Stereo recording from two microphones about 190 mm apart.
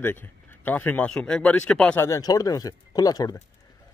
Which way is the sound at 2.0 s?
15° left (ahead or behind).